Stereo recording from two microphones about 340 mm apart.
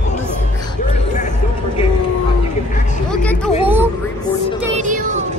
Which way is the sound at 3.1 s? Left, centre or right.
Centre.